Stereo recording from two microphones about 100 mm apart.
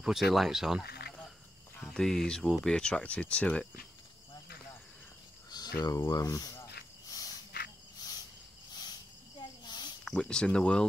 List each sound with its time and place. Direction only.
0.0 s speech: 5° right (ahead or behind)
1.9 s speech: 5° left (ahead or behind)
5.5 s cricket: 40° left (ahead or behind)
9.4 s a sound: 45° left (ahead or behind)
10.0 s speech: 5° left (ahead or behind)